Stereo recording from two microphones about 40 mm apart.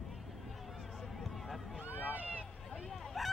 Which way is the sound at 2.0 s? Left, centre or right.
Right.